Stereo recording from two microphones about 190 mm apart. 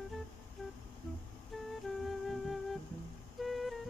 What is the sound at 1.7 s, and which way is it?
Music, centre (ahead or behind).